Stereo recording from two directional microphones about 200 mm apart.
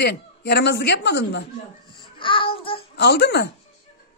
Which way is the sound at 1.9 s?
25° left (ahead or behind).